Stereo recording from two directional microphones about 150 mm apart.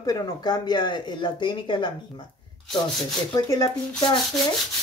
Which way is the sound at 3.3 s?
25° left (ahead or behind).